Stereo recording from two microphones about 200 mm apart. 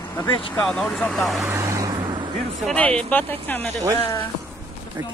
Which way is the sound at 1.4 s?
15° right (ahead or behind).